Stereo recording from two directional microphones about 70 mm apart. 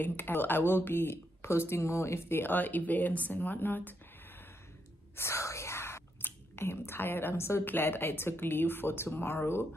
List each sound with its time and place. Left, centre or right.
0.0 s speech: left
5.1 s speech: left